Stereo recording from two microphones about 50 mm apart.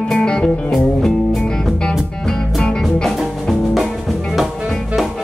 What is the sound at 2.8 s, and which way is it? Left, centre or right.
Music, centre.